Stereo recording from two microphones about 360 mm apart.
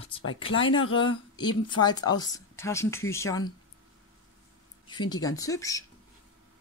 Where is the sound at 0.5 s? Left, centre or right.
Left.